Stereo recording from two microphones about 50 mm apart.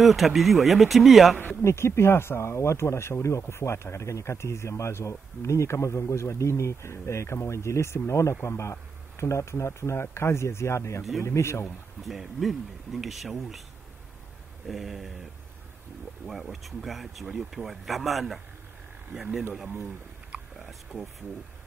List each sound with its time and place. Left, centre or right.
0.0 s speech: centre
1.6 s speech: left
12.0 s speech: centre
14.7 s speech: centre
16.3 s speech: centre
19.5 s speech: centre